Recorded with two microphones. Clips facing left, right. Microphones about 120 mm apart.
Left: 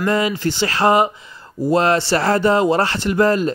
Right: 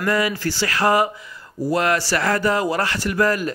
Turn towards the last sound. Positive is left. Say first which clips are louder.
# left 4 dB
turn(degrees=25)  # may be behind; listen again after turning